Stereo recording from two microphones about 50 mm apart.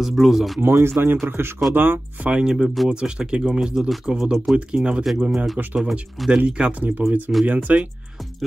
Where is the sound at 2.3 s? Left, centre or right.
Centre.